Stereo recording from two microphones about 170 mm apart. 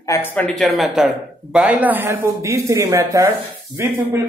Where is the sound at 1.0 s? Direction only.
5° right (ahead or behind); by 3.3 s 20° right (ahead or behind).